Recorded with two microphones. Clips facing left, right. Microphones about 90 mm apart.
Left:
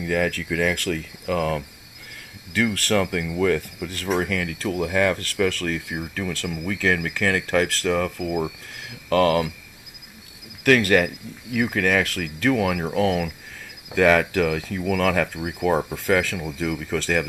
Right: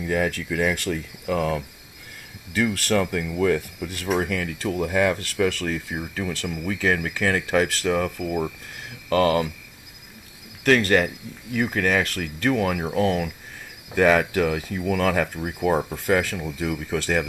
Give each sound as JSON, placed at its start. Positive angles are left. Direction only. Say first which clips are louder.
{"t": 0.0, "sound": "speech", "louder": "left 1 dB", "side_deg": -10}
{"t": 1.2, "sound": "speech", "louder": "even", "side_deg": -5}
{"t": 10.6, "sound": "speech", "louder": "left 1 dB", "side_deg": 5}